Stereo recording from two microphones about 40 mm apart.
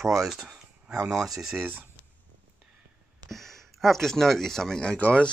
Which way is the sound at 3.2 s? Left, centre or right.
Centre.